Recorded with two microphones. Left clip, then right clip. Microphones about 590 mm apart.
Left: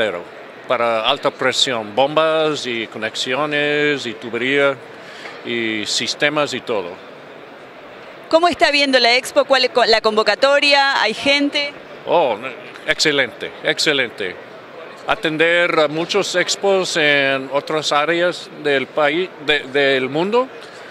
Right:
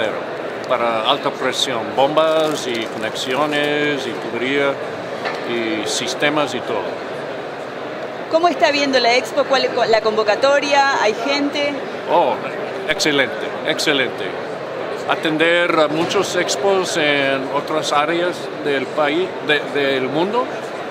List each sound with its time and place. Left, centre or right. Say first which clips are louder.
0.7 s speech: left 1 dB; left
8.3 s speech: left 1 dB; left
12.1 s speech: even; left